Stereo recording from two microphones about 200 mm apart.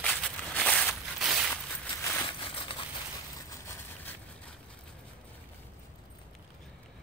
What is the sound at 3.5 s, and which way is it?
Vehicle, 10° left (ahead or behind).